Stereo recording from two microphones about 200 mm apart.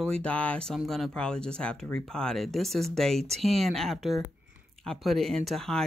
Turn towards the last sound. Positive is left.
turn(degrees=0)  # may be behind; listen again after turning